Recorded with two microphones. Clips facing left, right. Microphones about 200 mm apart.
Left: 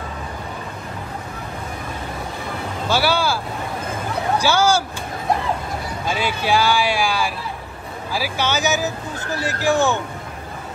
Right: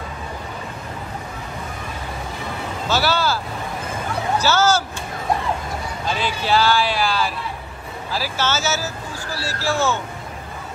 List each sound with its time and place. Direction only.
2.9 s vehicle: 10° left (ahead or behind)
4.4 s speech: 10° left (ahead or behind)
6.0 s speech: 10° left (ahead or behind)